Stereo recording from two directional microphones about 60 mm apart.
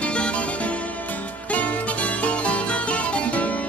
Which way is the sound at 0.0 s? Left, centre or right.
Centre.